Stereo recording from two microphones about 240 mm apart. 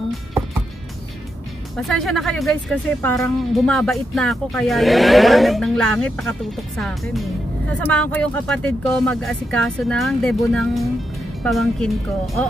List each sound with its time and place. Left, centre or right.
1.8 s speech: centre